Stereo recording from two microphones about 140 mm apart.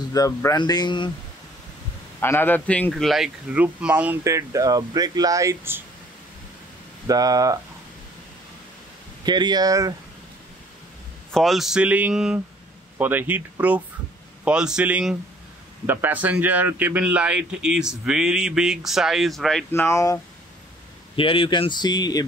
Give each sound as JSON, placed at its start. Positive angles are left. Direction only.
{"t": 0.1, "sound": "speech", "side_deg": 25}
{"t": 2.1, "sound": "a man's voice", "side_deg": 15}
{"t": 7.1, "sound": "speech", "side_deg": -25}
{"t": 9.2, "sound": "speech", "side_deg": -30}
{"t": 11.3, "sound": "a man's voice", "side_deg": 0}
{"t": 19.7, "sound": "speech", "side_deg": 20}
{"t": 21.2, "sound": "speech", "side_deg": 40}